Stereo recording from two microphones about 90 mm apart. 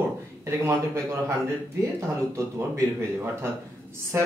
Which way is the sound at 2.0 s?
35° right (ahead or behind).